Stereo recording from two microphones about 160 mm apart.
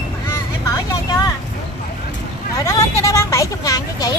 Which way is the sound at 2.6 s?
20° left (ahead or behind).